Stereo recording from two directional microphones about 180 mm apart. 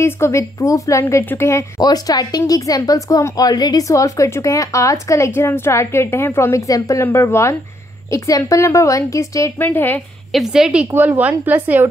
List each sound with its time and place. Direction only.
0.0 s a woman's voice: 15° left (ahead or behind)
10.3 s a woman's voice: centre (ahead or behind)